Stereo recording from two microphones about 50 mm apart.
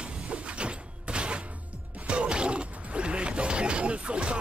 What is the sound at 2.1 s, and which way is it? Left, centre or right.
Mechanisms, right.